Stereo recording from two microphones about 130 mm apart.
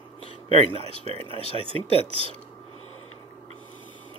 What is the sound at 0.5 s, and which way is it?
Speech, 50° right (ahead or behind).